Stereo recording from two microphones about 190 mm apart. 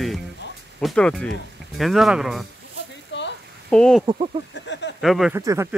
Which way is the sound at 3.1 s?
70° left (ahead or behind).